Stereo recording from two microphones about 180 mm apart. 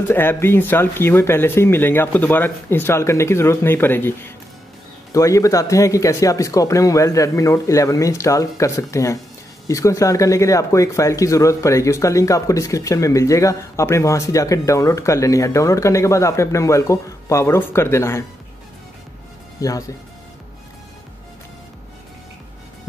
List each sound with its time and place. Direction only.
0.1 s speech: 10° left (ahead or behind)
19.6 s speech: 20° left (ahead or behind)